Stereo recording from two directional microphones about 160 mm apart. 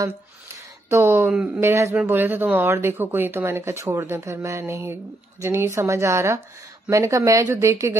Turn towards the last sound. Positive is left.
turn(degrees=-15)  # may be behind; listen again after turning